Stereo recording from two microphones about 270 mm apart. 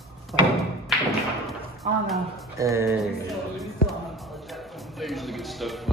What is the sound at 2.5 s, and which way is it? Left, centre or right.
Speech, centre.